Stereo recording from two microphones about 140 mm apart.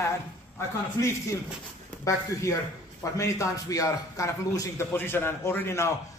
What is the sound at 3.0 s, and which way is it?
A man's voice, 20° left (ahead or behind).